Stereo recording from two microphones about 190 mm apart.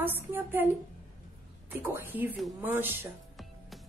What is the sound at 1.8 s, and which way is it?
A woman's voice, 10° right (ahead or behind).